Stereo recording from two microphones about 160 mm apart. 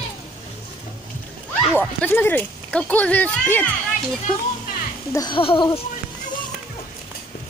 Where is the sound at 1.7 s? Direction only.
10° left (ahead or behind).